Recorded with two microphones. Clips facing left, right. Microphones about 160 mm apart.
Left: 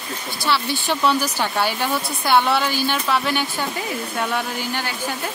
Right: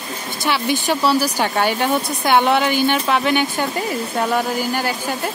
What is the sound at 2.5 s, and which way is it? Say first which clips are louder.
Speech: right 4 dB; 55° right (ahead or behind).